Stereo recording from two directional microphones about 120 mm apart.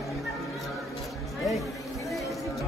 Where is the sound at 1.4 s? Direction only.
Centre (ahead or behind).